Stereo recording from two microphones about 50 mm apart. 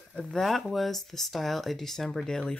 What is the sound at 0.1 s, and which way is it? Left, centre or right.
Speech, centre.